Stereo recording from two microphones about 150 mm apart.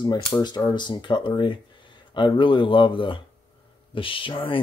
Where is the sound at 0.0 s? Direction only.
30° left (ahead or behind).